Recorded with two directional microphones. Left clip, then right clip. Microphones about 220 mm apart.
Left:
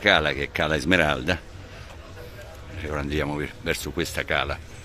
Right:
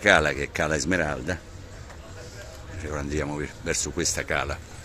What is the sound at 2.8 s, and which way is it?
Speech, 10° left (ahead or behind).